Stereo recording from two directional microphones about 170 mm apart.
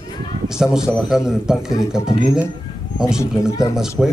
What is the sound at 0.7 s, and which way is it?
Speech, 5° right (ahead or behind).